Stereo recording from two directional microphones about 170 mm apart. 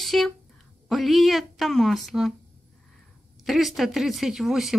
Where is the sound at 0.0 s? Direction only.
Centre (ahead or behind).